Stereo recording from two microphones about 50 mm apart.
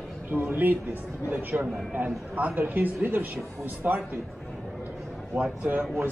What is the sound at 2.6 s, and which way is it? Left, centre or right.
Speech, right.